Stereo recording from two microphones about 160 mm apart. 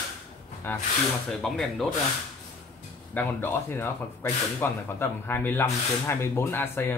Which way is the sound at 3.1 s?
15° left (ahead or behind).